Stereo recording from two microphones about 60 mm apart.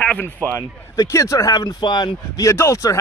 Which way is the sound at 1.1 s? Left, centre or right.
Left.